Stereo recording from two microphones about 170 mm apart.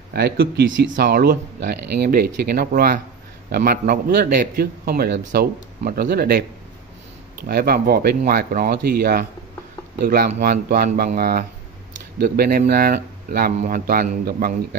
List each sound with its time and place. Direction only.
0.1 s speech: 65° right (ahead or behind)
4.1 s speech: 75° right (ahead or behind)
7.4 s speech: 65° right (ahead or behind)